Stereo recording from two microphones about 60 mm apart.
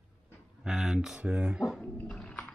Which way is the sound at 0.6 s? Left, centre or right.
Centre.